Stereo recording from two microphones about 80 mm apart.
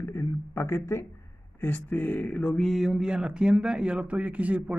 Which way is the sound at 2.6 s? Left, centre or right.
Centre.